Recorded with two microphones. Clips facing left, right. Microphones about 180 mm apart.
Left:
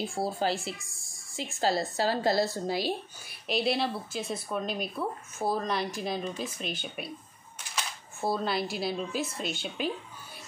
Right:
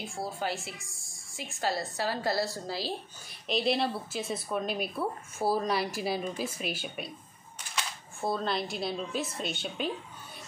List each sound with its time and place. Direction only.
0.0 s a woman's voice: 30° left (ahead or behind); by 2.9 s 15° left (ahead or behind)
3.4 s speech: centre (ahead or behind)
7.7 s speech: 5° left (ahead or behind)